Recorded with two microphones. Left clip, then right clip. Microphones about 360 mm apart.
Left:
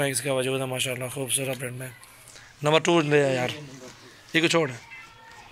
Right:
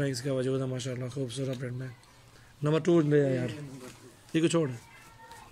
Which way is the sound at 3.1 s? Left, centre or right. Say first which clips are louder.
Left 5 dB; left.